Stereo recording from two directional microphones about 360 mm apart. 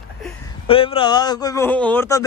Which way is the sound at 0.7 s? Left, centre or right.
Centre.